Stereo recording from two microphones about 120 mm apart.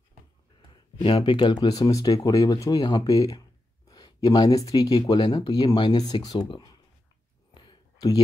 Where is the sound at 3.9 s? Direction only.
35° left (ahead or behind).